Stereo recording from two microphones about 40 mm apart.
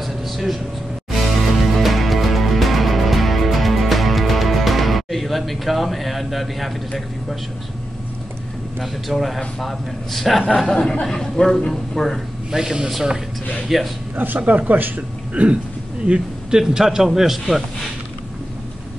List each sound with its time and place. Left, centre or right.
0.0 s air conditioning: centre
1.1 s music: centre
9.1 s a man's voice: centre
10.7 s a man's voice: centre
12.4 s a man's voice: centre
14.1 s a man's voice: right
16.1 s a man's voice: centre